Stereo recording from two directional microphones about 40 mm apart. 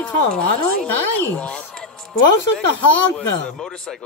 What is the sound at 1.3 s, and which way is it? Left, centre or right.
Speech, left.